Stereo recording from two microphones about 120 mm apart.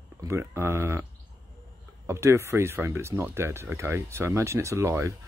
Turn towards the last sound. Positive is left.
turn(degrees=-25)  # may be behind; listen again after turning